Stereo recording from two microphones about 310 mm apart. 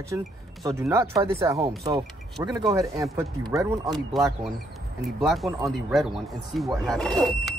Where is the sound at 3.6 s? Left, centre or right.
Centre.